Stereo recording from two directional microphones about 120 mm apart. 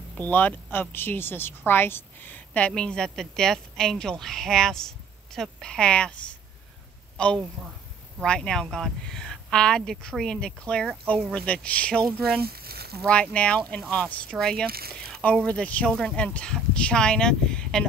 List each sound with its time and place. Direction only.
0.3 s a woman's voice: 15° left (ahead or behind)
7.6 s speech: 10° right (ahead or behind)
8.2 s a woman's voice: 5° left (ahead or behind)